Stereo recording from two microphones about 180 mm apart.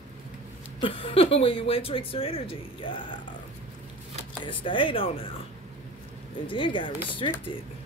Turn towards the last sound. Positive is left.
turn(degrees=25)  # may be behind; listen again after turning